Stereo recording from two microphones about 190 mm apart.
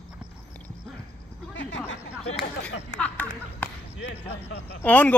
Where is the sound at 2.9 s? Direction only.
10° left (ahead or behind).